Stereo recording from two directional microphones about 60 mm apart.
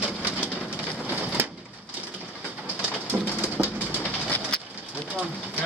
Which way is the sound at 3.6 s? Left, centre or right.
Right.